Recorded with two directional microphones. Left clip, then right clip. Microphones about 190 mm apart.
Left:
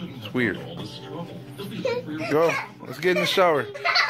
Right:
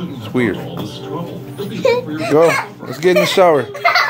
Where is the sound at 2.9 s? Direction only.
10° right (ahead or behind).